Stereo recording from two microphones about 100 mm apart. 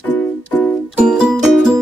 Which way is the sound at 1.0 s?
10° right (ahead or behind).